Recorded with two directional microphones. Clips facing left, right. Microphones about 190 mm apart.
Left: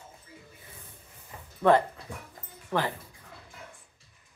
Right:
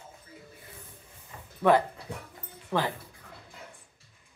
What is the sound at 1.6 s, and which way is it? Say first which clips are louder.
Speech: left 1 dB; 10° right (ahead or behind).